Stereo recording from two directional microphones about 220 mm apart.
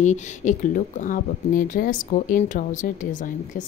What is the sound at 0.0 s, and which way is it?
Speech, 35° left (ahead or behind).